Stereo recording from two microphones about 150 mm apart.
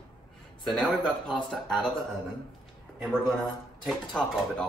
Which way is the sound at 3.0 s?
Centre (ahead or behind).